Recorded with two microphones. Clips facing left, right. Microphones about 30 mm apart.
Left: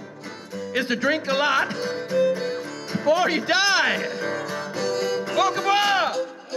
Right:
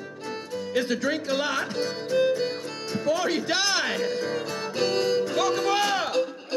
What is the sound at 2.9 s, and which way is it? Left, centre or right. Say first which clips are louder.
Speech: left 5 dB; centre.